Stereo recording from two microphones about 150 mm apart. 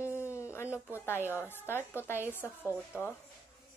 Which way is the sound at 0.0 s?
20° left (ahead or behind).